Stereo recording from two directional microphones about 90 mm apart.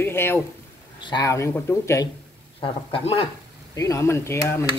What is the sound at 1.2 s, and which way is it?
Speech, 35° left (ahead or behind).